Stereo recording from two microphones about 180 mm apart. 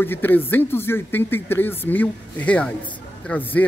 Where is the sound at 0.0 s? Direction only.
10° left (ahead or behind).